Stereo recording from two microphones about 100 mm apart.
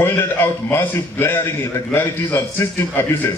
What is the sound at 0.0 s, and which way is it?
A man's voice, 20° left (ahead or behind).